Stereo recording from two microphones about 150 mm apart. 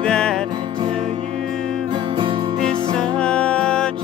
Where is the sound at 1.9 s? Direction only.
30° right (ahead or behind).